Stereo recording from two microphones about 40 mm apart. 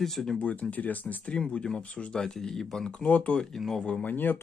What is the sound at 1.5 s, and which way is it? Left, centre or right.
Speech, left.